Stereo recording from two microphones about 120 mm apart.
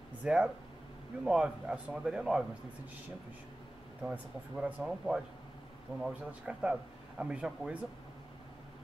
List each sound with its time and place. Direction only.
0.2 s speech: 10° right (ahead or behind)
4.1 s speech: 10° right (ahead or behind)